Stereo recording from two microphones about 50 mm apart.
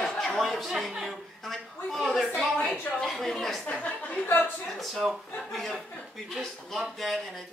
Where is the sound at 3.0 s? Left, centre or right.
Centre.